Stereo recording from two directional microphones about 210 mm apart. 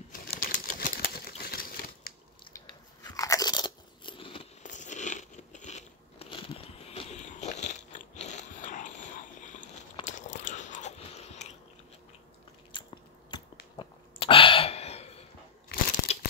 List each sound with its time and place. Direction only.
0.1 s typewriter: 45° left (ahead or behind)
2.4 s crunch: 15° left (ahead or behind); by 8.9 s 35° left (ahead or behind)
9.4 s biting: 35° left (ahead or behind)
12.7 s biting: 20° left (ahead or behind)
13.7 s a sound: 25° left (ahead or behind)
16.1 s crumpling: 30° left (ahead or behind)